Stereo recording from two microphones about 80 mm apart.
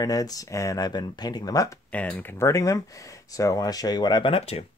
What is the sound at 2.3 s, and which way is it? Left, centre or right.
Speech, left.